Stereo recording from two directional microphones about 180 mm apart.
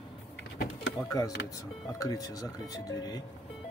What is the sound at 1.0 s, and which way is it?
Speech, 20° left (ahead or behind).